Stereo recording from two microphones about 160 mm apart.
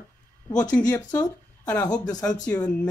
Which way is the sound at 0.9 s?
25° left (ahead or behind).